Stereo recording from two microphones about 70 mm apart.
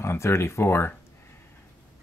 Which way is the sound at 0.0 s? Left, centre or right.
Left.